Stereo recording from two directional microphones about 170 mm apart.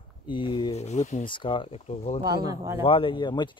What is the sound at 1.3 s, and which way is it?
Speech, 30° left (ahead or behind).